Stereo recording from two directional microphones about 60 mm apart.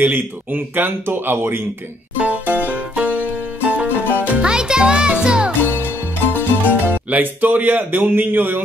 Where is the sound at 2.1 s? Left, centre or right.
Right.